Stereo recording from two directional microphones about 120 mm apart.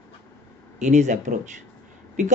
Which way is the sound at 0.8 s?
90° right.